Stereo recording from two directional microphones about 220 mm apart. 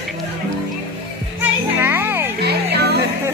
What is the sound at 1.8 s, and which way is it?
Music, 10° right (ahead or behind).